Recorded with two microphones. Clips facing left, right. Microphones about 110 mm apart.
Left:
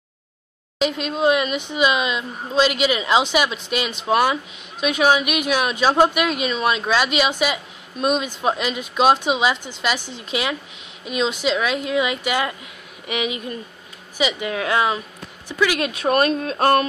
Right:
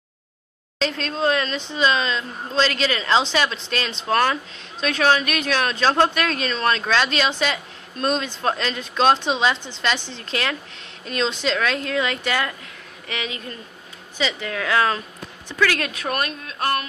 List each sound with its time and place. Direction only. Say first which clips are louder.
0.7 s speech: left 3 dB; 10° left (ahead or behind)
16.3 s mantra: left 8 dB; 30° left (ahead or behind)